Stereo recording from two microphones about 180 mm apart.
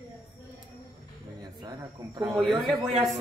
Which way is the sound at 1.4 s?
20° right (ahead or behind).